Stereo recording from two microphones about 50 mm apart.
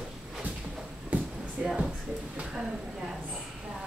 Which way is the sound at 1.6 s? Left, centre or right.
Centre.